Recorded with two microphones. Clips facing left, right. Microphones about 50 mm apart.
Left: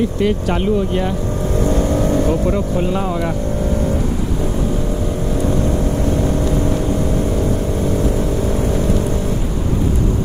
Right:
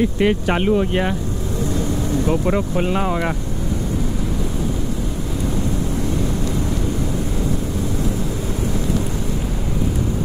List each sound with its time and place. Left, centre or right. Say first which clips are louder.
0.2 s speech: even; right
1.7 s vehicle: left 6 dB; left
2.2 s speech: left 2 dB; right